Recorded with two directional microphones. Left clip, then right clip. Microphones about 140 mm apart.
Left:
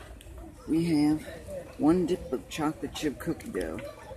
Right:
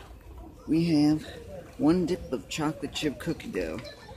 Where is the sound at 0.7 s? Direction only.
20° right (ahead or behind).